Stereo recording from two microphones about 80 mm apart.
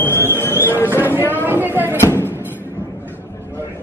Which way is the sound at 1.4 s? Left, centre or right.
Right.